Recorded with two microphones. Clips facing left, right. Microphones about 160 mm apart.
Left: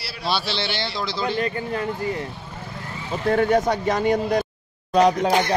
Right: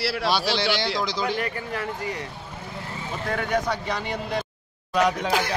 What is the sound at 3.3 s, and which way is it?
Speech, 45° left (ahead or behind).